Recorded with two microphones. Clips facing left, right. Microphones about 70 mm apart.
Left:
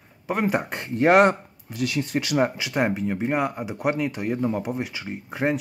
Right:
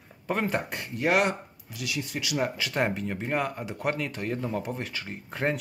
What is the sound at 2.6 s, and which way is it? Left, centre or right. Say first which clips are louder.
Speech: left 4 dB; centre.